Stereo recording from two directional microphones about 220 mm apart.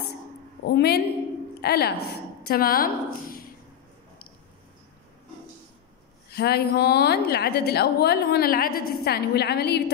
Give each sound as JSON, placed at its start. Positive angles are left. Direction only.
{"t": 0.7, "sound": "a woman's voice", "side_deg": 50}
{"t": 6.3, "sound": "a woman's voice", "side_deg": 45}